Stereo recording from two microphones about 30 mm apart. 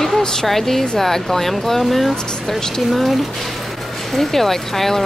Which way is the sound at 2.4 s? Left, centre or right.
Centre.